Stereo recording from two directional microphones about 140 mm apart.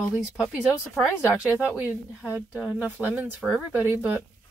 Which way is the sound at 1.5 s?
10° right (ahead or behind).